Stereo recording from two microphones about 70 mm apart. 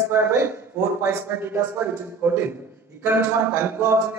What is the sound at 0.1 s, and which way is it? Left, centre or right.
Speech, right.